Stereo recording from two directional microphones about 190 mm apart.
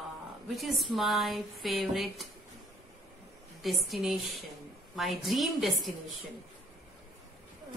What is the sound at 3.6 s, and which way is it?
Speech, centre (ahead or behind).